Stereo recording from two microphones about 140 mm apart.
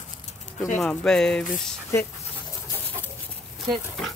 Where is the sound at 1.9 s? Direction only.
20° left (ahead or behind).